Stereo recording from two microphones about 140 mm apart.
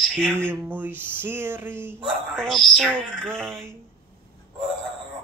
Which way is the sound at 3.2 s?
15° right (ahead or behind).